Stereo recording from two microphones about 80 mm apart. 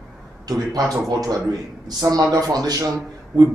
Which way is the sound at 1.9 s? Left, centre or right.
Right.